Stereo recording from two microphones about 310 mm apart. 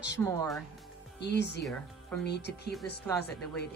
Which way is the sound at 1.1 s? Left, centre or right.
Left.